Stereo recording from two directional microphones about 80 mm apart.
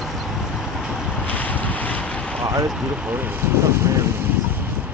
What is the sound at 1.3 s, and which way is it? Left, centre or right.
Boat, left.